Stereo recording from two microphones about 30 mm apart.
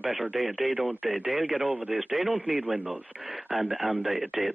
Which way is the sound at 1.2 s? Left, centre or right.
Right.